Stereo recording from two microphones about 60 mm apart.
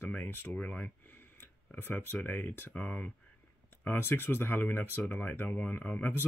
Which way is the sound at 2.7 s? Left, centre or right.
Centre.